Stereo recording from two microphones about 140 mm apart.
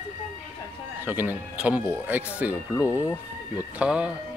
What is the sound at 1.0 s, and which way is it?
Speech, 15° right (ahead or behind).